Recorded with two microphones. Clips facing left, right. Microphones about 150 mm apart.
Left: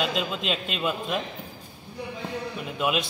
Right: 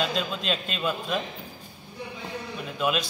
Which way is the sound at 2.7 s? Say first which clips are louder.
Even; 15° left (ahead or behind).